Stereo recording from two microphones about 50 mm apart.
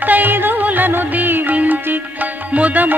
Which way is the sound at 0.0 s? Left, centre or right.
Right.